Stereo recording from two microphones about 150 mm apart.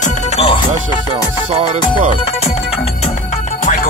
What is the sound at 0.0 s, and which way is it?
Music, 40° left (ahead or behind).